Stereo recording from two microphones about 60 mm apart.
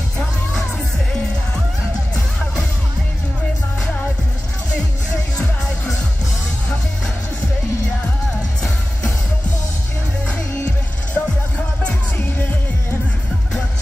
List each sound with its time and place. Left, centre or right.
11.2 s music: centre